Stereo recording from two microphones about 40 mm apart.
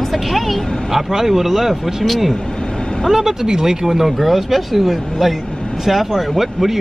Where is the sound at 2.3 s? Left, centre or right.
Centre.